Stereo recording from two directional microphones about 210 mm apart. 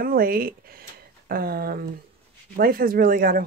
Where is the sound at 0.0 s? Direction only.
45° right (ahead or behind).